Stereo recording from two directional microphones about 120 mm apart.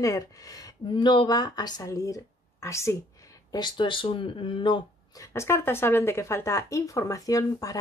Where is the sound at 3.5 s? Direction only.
40° left (ahead or behind).